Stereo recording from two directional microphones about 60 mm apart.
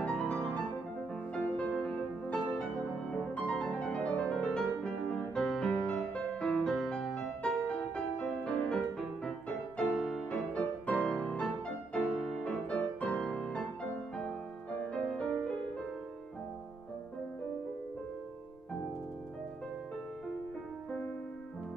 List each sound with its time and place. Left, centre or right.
0.0 s music: centre
5.3 s music: centre
5.9 s music: left
6.5 s music: centre
8.9 s music: centre
10.5 s music: left